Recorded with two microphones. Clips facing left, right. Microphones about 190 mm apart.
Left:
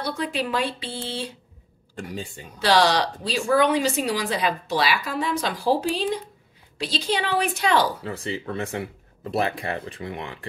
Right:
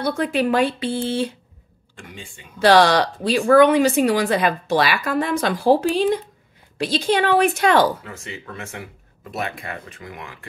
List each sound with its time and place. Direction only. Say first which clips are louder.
0.0 s speech: right 6 dB; 50° right (ahead or behind)
2.0 s speech: left 7 dB; 40° left (ahead or behind)
2.6 s speech: right 5 dB; 55° right (ahead or behind)
8.0 s speech: left 6 dB; 35° left (ahead or behind)